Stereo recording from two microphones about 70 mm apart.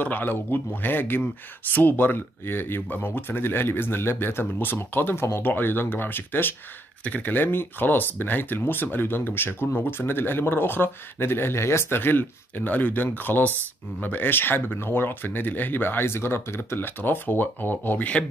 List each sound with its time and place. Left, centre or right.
0.0 s speech: left